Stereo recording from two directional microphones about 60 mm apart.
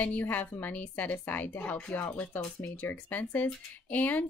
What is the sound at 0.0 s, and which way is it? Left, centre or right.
Speech, left.